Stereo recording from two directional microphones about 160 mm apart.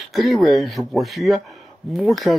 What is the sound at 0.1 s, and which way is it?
Speech, centre (ahead or behind).